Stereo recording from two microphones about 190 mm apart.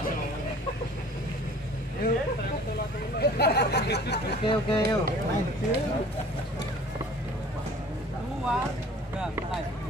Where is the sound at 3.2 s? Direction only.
55° left (ahead or behind).